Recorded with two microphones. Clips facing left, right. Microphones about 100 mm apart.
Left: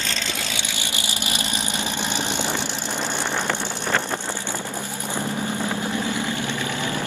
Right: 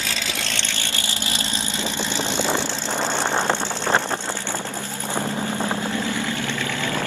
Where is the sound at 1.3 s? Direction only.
15° left (ahead or behind).